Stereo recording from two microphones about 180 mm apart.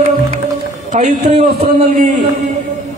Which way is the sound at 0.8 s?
40° right (ahead or behind).